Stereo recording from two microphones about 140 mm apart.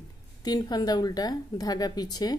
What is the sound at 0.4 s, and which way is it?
A woman's voice, 30° left (ahead or behind).